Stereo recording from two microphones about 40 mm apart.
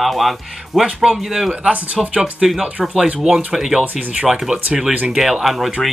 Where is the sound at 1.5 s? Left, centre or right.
Right.